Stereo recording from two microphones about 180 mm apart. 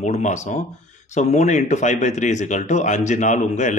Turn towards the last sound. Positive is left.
turn(degrees=40)  # may be behind; listen again after turning